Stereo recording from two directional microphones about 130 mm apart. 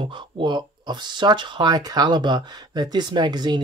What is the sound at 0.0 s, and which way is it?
Speech, 40° right (ahead or behind).